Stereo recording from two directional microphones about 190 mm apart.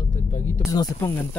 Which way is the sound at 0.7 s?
15° left (ahead or behind).